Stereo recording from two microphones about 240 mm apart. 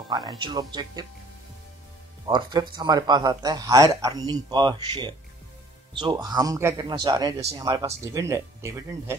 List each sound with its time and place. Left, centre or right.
0.1 s speech: centre
2.2 s speech: centre